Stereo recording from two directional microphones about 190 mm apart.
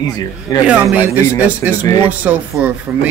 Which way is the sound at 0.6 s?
5° right (ahead or behind).